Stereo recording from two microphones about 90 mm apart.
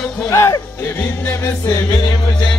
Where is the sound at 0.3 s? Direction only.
35° left (ahead or behind).